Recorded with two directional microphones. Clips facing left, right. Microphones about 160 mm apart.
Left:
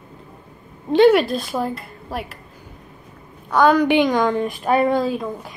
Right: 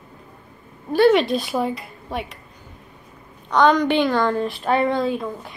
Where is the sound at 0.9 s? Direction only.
15° left (ahead or behind).